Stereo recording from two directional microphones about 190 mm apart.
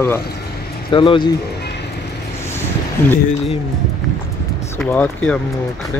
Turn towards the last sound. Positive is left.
turn(degrees=5)  # may be behind; listen again after turning